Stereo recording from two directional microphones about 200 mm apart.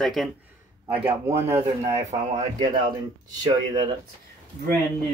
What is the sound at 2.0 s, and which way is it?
Speech, 15° right (ahead or behind).